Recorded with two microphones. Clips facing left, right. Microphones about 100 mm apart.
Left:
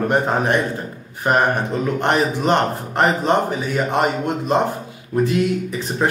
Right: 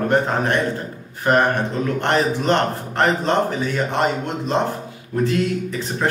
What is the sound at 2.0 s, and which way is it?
A man's voice, 15° left (ahead or behind).